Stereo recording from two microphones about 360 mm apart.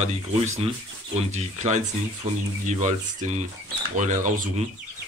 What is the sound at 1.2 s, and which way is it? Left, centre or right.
Speech, centre.